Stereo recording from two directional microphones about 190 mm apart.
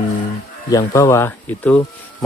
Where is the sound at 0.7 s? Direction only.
15° left (ahead or behind).